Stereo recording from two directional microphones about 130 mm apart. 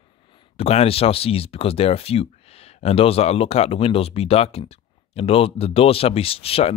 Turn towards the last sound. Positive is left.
turn(degrees=50)  # may be behind; listen again after turning